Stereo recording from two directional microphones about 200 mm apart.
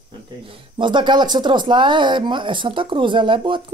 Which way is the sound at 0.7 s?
25° right (ahead or behind).